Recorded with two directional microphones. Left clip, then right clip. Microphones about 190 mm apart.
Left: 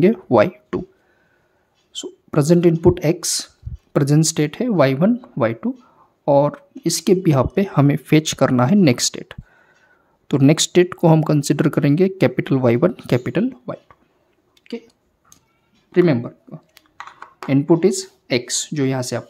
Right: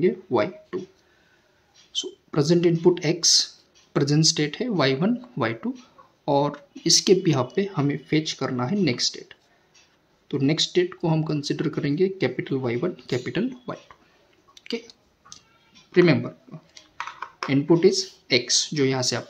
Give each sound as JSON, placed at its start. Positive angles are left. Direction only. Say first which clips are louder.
{"t": 0.0, "sound": "speech", "louder": "left 8 dB", "side_deg": 60}
{"t": 1.9, "sound": "speech", "louder": "even", "side_deg": 50}
{"t": 14.5, "sound": "a sound", "louder": "right 1 dB", "side_deg": 20}
{"t": 15.9, "sound": "speech", "louder": "left 2 dB", "side_deg": 35}
{"t": 16.9, "sound": "computer keyboard", "louder": "right 3 dB", "side_deg": 65}
{"t": 17.5, "sound": "speech", "louder": "left 3 dB", "side_deg": 45}